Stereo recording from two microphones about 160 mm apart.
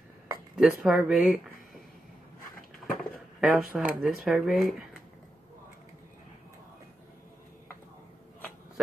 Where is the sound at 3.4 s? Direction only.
5° right (ahead or behind).